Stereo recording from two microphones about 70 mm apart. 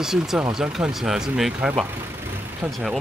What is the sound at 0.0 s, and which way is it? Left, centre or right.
Speech, centre.